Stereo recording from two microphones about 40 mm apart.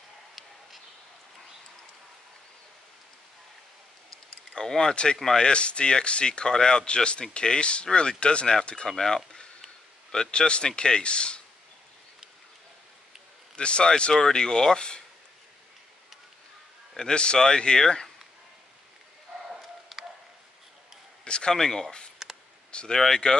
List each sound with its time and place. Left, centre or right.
4.6 s speech: centre
5.5 s speech: left
8.8 s speech: centre
13.6 s speech: left
17.1 s speech: left
19.6 s a sound: centre
21.2 s a sound: left
21.5 s speech: centre
22.7 s speech: left
22.9 s speech: centre